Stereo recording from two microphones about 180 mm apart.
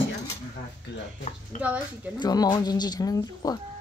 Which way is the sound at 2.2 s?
20° left (ahead or behind).